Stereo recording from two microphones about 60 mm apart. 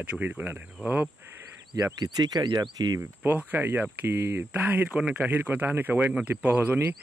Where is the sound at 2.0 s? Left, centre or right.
Right.